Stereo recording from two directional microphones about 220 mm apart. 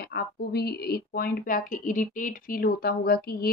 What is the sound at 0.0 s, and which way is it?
Speech, 45° left (ahead or behind).